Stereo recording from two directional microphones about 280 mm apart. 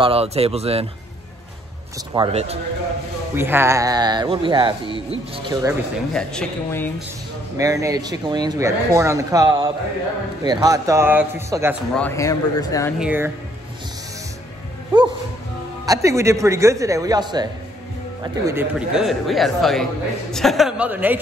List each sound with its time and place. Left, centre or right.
0.0 s speech: right
2.1 s speech: right
3.3 s speech: centre
6.1 s a man's voice: centre
7.5 s speech: centre
11.9 s speech: centre
13.0 s speech: centre
15.8 s a man's voice: centre